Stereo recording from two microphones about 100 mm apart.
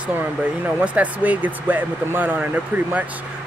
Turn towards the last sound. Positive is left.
turn(degrees=-15)  # may be behind; listen again after turning